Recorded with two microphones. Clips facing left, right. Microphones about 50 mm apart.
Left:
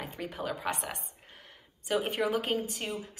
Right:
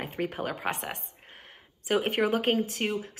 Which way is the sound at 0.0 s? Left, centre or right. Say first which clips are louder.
Right 5 dB; right.